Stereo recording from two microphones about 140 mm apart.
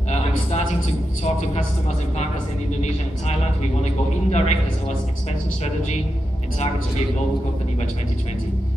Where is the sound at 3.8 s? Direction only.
50° left (ahead or behind).